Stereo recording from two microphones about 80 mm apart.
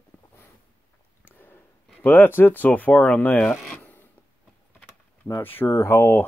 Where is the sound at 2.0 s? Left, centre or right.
Left.